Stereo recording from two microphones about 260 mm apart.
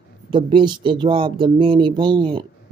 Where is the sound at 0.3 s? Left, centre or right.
Centre.